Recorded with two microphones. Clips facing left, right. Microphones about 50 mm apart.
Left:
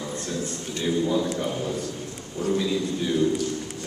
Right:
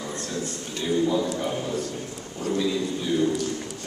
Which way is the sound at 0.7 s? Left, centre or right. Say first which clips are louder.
Right 1 dB; centre.